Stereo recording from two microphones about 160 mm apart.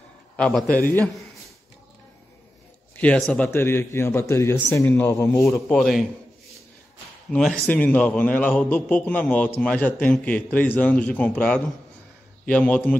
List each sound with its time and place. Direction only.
0.4 s a man's voice: 5° left (ahead or behind)
3.0 s a man's voice: 10° left (ahead or behind)
5.7 s a man's voice: 5° left (ahead or behind)
7.2 s a man's voice: 5° left (ahead or behind)